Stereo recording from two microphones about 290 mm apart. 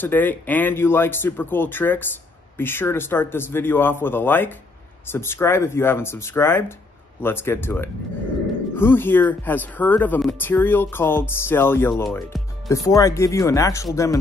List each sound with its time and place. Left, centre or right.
0.0 s speech: centre